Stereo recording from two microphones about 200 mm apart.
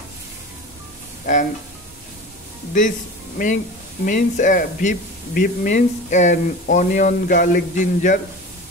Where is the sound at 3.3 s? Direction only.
40° left (ahead or behind).